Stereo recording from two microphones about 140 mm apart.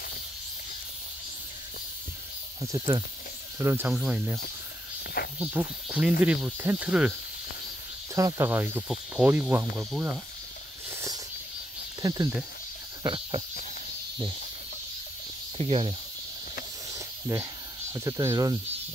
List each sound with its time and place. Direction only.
2.6 s speech: 30° right (ahead or behind)
3.5 s speech: 20° right (ahead or behind)
5.4 s speech: 10° right (ahead or behind)
8.1 s speech: 25° right (ahead or behind)
9.8 s speech: 5° right (ahead or behind)
12.0 s speech: 25° right (ahead or behind)
13.0 s a sound: 40° right (ahead or behind)
15.5 s speech: 45° right (ahead or behind)
16.9 s snake: 25° right (ahead or behind)
17.9 s speech: 20° right (ahead or behind)